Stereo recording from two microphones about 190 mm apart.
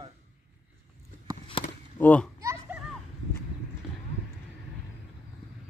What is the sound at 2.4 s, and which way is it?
Children playing, 15° right (ahead or behind).